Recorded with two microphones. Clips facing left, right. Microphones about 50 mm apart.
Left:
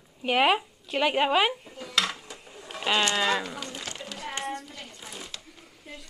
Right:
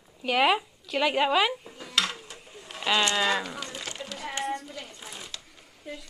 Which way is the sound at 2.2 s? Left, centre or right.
Centre.